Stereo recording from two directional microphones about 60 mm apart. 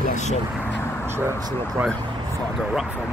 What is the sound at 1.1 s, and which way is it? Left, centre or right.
Speech, right.